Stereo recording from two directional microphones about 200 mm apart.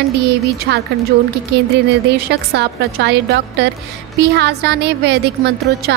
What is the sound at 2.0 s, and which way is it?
A woman's voice, 55° right (ahead or behind).